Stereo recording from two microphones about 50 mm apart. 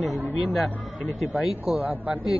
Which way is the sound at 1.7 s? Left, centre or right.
Right.